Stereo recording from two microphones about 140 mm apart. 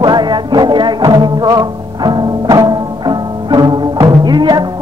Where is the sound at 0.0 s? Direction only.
30° right (ahead or behind).